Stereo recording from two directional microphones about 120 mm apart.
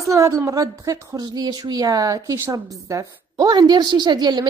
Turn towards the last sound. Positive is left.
turn(degrees=-35)  # may be behind; listen again after turning